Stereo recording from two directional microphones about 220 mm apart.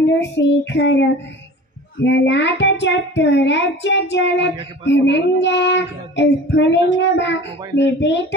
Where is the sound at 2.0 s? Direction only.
55° left (ahead or behind).